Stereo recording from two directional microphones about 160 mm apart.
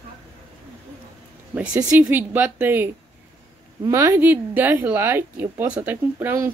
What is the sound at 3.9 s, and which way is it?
A woman's voice, 15° right (ahead or behind).